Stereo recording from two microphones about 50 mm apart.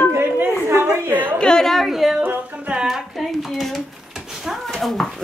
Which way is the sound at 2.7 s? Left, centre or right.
Centre.